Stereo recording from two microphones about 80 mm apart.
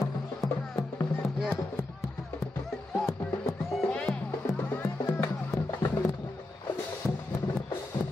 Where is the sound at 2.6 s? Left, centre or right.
Centre.